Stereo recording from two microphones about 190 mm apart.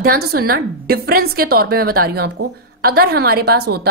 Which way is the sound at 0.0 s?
50° right (ahead or behind).